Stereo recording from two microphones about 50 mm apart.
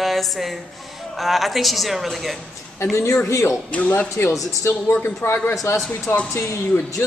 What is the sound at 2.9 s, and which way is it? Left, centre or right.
Speech, left.